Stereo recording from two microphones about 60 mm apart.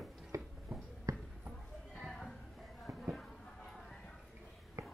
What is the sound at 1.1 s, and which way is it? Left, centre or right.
Basketball bounce, right.